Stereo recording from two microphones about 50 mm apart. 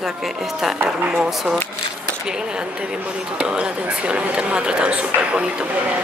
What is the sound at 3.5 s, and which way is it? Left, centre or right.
Speech, right.